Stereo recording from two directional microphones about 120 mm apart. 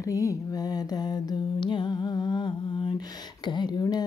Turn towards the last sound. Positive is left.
turn(degrees=35)  # may be behind; listen again after turning